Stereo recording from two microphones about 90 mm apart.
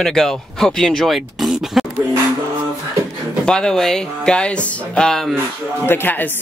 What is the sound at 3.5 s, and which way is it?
Speech, 10° left (ahead or behind).